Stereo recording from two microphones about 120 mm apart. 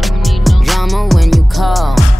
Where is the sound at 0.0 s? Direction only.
Centre (ahead or behind).